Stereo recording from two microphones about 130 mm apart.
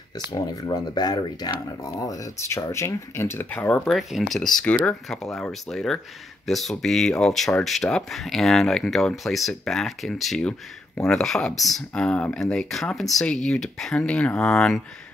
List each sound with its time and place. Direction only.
0.3 s speech: 30° left (ahead or behind); by 3.8 s 10° left (ahead or behind)
3.8 s speech: centre (ahead or behind)